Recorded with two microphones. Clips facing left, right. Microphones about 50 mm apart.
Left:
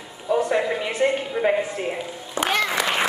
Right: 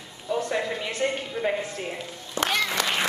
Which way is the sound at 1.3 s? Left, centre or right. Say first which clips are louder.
Left 6 dB; left.